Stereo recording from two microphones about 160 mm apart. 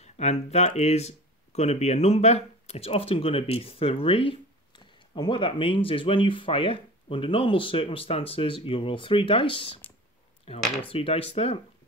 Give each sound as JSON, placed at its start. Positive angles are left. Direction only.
{"t": 0.0, "sound": "speech", "side_deg": 45}